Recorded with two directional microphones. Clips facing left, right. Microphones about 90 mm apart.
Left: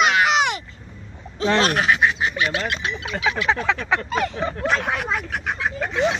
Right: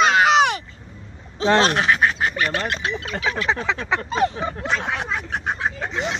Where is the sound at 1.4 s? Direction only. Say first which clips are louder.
Right 2 dB; 30° right (ahead or behind).